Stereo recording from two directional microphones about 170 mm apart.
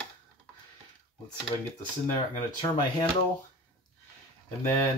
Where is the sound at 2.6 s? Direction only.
20° left (ahead or behind).